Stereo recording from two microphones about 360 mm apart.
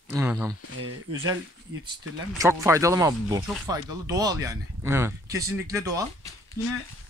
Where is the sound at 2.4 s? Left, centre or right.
Centre.